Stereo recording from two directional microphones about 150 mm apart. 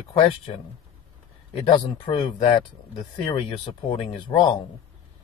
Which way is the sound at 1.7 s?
30° left (ahead or behind).